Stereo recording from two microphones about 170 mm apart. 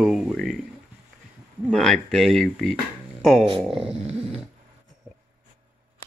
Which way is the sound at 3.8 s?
40° right (ahead or behind).